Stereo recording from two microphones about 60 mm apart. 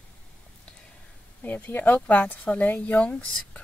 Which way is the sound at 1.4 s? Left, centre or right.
Left.